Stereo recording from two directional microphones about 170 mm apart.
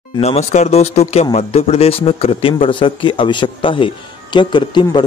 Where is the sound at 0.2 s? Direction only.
40° left (ahead or behind).